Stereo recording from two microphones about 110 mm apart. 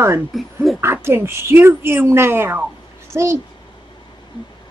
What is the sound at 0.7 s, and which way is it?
Speech, 20° right (ahead or behind).